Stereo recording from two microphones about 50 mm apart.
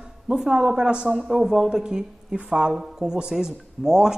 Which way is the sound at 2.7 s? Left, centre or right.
Centre.